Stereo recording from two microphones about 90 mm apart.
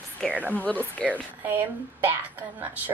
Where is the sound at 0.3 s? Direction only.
20° right (ahead or behind).